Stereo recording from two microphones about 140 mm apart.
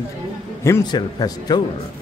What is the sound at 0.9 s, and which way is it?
Speech, 30° left (ahead or behind).